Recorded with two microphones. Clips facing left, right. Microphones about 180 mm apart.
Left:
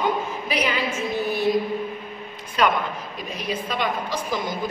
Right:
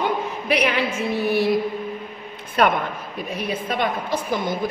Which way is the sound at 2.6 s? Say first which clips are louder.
Right 2 dB; 55° right (ahead or behind).